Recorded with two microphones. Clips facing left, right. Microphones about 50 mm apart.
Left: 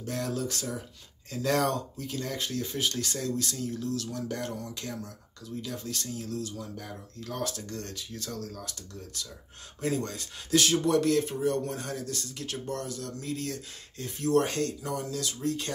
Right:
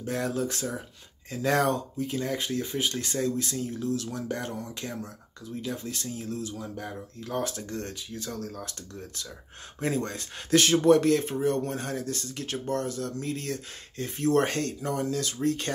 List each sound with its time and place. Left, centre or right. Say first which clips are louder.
0.0 s speech: right 3 dB; right